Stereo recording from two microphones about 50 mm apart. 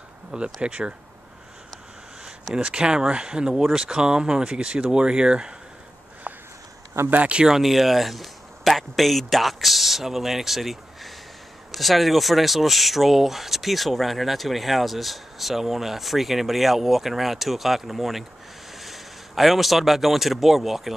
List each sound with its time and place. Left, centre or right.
0.3 s speech: right
2.2 s speech: centre
6.3 s a sound: right
7.2 s speech: centre
7.5 s speech: centre